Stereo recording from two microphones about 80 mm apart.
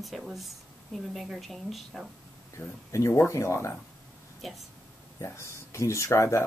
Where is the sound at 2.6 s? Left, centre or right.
Left.